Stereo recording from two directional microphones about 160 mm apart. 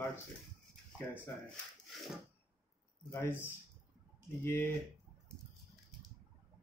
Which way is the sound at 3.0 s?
15° left (ahead or behind).